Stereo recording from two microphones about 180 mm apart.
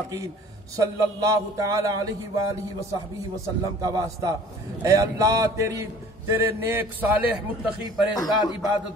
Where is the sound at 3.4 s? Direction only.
20° right (ahead or behind).